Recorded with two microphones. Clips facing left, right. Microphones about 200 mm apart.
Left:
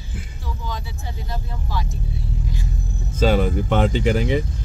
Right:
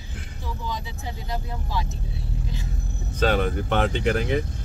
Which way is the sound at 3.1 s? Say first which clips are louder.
Left 4 dB; centre (ahead or behind).